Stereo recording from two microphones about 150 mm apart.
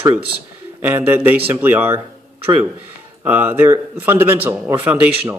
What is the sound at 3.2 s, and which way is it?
A man's voice, 15° right (ahead or behind).